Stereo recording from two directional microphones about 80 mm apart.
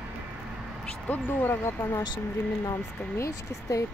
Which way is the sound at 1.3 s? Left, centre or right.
Left.